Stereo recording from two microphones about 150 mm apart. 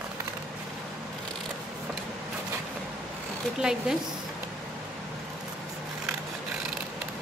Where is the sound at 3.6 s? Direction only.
5° right (ahead or behind).